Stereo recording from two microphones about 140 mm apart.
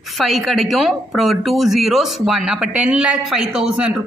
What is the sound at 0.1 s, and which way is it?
Speech, centre (ahead or behind).